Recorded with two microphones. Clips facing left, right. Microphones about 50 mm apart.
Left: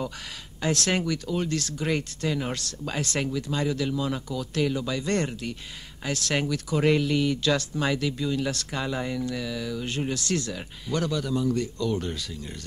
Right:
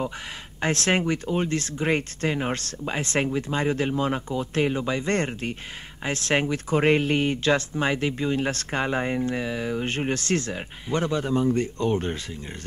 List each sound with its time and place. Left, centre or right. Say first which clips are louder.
0.6 s speech: right 2 dB; right